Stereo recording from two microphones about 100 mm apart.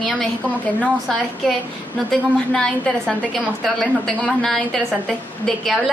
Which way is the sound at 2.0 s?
10° left (ahead or behind).